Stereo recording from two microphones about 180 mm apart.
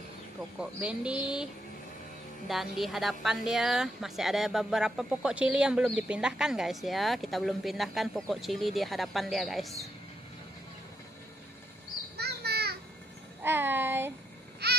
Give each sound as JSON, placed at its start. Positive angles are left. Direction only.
{"t": 0.6, "sound": "speech", "side_deg": -5}
{"t": 12.2, "sound": "children playing", "side_deg": -65}
{"t": 13.4, "sound": "a sound", "side_deg": -10}
{"t": 14.6, "sound": "baby cry", "side_deg": -65}